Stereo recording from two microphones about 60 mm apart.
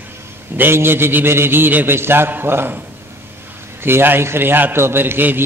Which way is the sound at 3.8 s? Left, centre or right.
Right.